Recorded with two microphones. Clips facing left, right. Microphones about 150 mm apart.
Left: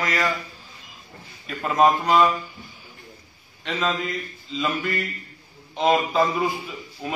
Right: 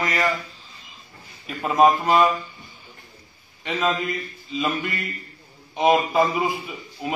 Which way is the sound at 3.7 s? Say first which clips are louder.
Right 2 dB; 10° right (ahead or behind).